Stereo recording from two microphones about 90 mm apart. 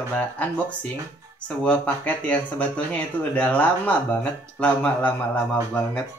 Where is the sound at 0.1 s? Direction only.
15° left (ahead or behind).